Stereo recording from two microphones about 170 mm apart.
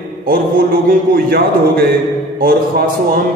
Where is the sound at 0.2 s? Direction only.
55° right (ahead or behind).